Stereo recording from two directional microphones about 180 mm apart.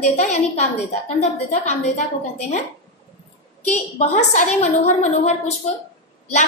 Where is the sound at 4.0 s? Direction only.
40° left (ahead or behind).